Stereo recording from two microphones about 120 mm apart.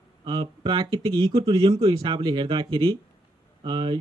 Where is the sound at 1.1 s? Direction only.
45° right (ahead or behind).